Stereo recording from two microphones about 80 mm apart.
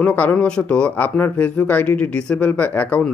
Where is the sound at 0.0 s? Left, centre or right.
Left.